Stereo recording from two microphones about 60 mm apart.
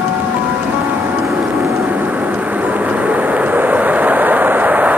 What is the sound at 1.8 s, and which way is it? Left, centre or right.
Vehicle, right.